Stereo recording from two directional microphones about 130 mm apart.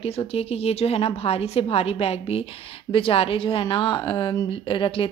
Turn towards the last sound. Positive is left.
turn(degrees=40)  # may be behind; listen again after turning